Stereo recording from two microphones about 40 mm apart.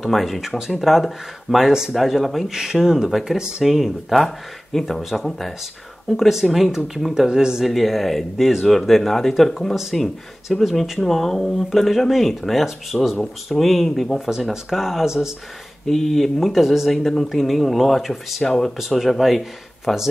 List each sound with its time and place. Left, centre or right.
0.0 s speech: centre
2.0 s speech: centre
4.7 s speech: centre
7.2 s speech: centre
7.6 s speech: centre
16.9 s speech: centre
18.4 s speech: centre
18.8 s speech: centre